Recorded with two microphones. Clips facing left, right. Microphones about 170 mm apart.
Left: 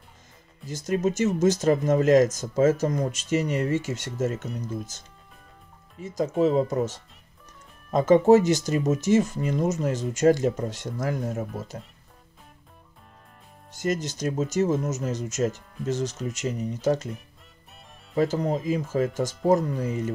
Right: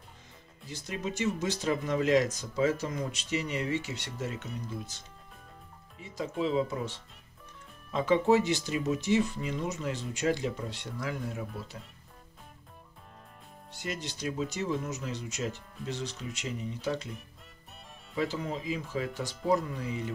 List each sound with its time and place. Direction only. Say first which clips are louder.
0.7 s speech: left 11 dB; 45° left (ahead or behind)
13.7 s speech: left 10 dB; 45° left (ahead or behind)
18.1 s speech: left 8 dB; 45° left (ahead or behind)